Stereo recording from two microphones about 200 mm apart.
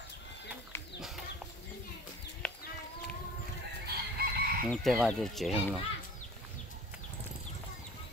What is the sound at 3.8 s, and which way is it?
Chicken, 50° right (ahead or behind).